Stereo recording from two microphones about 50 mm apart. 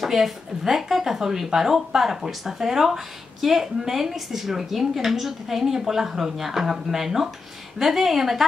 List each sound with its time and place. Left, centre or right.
0.0 s a woman's voice: centre